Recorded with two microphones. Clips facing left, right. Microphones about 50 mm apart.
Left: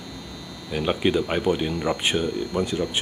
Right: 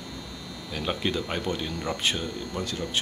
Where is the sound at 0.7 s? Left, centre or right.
Centre.